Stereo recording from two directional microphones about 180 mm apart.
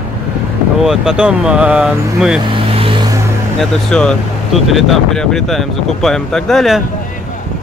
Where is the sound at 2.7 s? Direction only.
30° right (ahead or behind).